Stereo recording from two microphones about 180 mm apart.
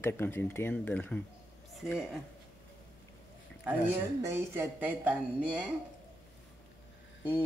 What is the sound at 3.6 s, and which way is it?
Speech, 10° right (ahead or behind).